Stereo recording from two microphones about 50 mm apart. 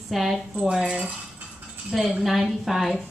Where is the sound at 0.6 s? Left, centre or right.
Centre.